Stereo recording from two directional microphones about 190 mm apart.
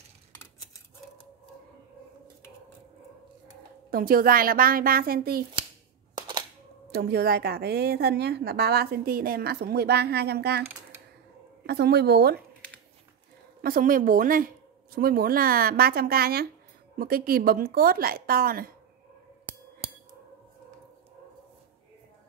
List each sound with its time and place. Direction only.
3.9 s speech: 50° right (ahead or behind)
6.1 s camera: 25° right (ahead or behind)
6.9 s a woman's voice: 55° right (ahead or behind)
11.6 s a woman's voice: 60° right (ahead or behind)
13.6 s speech: 50° right (ahead or behind)